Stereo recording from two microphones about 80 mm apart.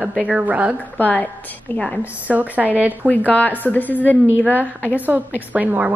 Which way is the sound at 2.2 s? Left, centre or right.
Centre.